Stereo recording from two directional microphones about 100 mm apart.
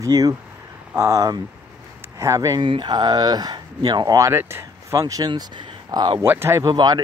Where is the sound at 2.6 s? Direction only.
50° right (ahead or behind); by 5.2 s 35° right (ahead or behind).